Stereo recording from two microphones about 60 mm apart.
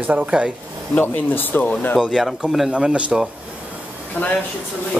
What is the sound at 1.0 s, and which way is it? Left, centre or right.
Speech, left.